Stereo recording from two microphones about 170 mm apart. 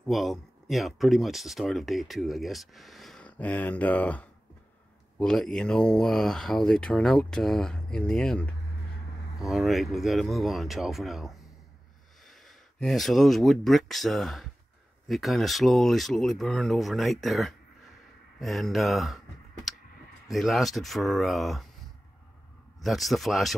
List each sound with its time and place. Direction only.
0.0 s speech: centre (ahead or behind)
19.7 s a sound: centre (ahead or behind)
20.2 s speech: centre (ahead or behind)
22.8 s speech: centre (ahead or behind)